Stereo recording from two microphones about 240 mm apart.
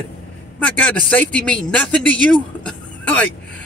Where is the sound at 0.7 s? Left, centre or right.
Centre.